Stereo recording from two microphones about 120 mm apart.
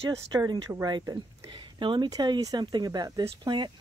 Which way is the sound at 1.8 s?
40° right (ahead or behind).